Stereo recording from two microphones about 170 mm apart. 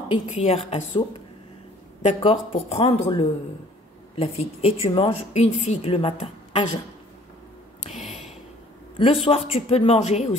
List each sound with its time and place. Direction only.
0.1 s a woman's voice: 35° left (ahead or behind)
2.2 s a woman's voice: 30° left (ahead or behind)
7.8 s a sound: 45° left (ahead or behind)
8.9 s a woman's voice: 30° left (ahead or behind)